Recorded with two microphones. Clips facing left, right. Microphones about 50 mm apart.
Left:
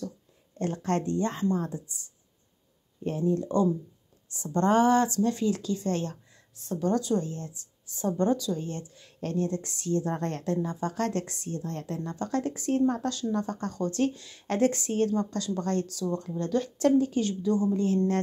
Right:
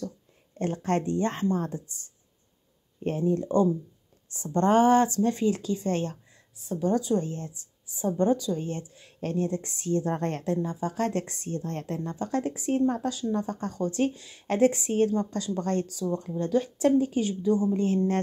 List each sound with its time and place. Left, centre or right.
0.6 s speech: right
1.2 s a woman's voice: right
3.0 s a woman's voice: right
6.3 s a sound: centre
6.9 s speech: centre
7.2 s speech: right
7.8 s speech: centre
10.4 s speech: centre
11.2 s a woman's voice: right
12.0 s speech: centre